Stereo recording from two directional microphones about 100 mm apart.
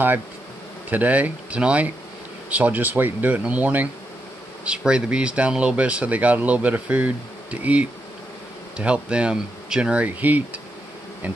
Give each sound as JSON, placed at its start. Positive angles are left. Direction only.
{"t": 0.8, "sound": "speech", "side_deg": -15}